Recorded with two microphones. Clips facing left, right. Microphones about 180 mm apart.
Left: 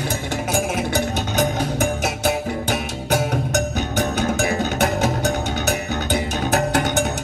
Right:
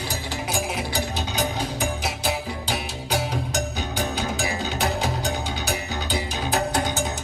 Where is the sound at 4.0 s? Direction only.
55° left (ahead or behind).